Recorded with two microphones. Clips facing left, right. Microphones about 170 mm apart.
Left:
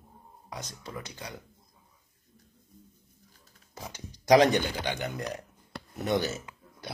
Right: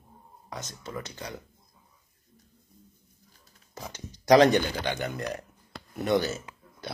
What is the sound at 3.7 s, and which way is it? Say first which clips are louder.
Speech: right 2 dB; 15° left (ahead or behind).